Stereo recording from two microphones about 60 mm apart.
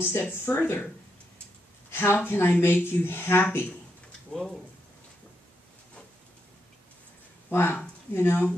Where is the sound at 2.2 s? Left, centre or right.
Left.